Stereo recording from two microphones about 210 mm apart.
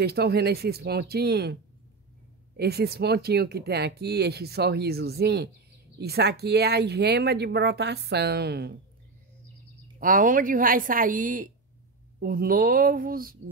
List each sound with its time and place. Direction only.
0.0 s speech: 50° right (ahead or behind)
9.9 s a woman's voice: 40° right (ahead or behind)